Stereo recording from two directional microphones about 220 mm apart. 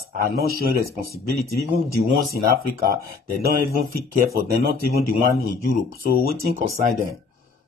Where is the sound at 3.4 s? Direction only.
45° right (ahead or behind).